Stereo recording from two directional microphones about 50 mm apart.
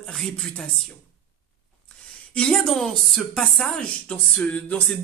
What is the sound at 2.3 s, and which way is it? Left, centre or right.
Speech, centre.